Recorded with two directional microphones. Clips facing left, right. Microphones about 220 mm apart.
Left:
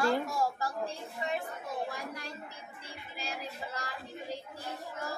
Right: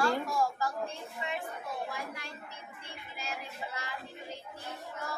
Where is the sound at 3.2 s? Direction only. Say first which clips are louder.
Left 1 dB; 35° left (ahead or behind).